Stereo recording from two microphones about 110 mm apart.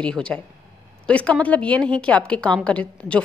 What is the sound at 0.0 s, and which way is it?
A woman's voice, 10° left (ahead or behind).